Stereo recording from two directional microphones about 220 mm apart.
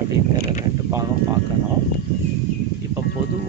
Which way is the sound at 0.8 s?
15° right (ahead or behind).